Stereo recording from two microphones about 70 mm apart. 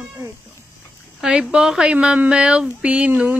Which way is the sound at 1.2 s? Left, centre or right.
Centre.